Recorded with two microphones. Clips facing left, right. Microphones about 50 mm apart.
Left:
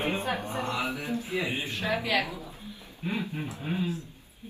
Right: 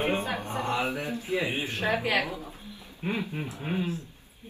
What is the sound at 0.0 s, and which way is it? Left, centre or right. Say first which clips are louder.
Music: right 1 dB; right.